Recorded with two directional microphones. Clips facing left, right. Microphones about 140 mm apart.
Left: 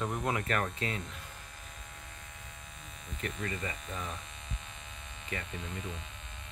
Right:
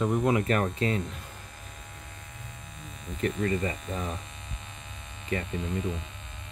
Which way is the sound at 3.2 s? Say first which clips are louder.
Right 10 dB; 35° right (ahead or behind).